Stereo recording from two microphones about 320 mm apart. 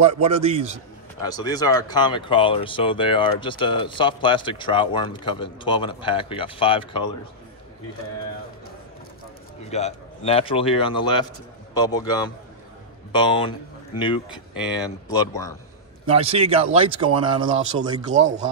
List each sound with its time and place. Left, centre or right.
0.2 s a man's voice: centre
1.2 s speech: centre
9.7 s speech: centre
15.0 s speech: centre
16.1 s speech: centre